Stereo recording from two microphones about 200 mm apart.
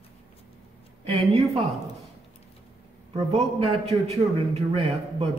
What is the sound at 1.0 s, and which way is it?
Speech, 30° right (ahead or behind).